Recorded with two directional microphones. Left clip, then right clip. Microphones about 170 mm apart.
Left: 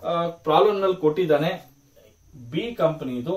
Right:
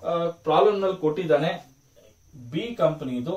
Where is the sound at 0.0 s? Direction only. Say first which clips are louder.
Left 1 dB; 20° left (ahead or behind).